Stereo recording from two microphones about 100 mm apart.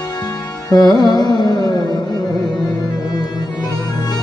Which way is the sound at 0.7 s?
40° left (ahead or behind).